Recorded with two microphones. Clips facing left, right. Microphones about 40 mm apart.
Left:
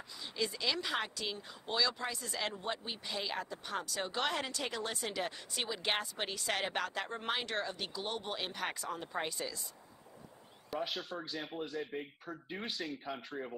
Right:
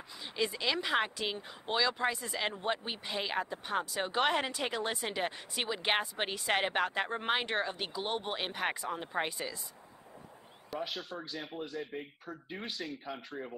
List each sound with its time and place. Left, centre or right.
0.2 s speech: right
10.7 s speech: centre